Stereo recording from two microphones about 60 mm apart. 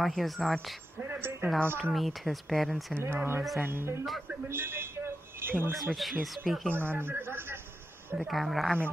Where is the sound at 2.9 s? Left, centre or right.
Right.